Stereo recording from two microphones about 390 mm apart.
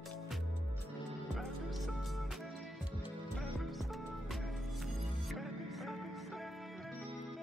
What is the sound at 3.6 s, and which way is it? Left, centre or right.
Music, centre.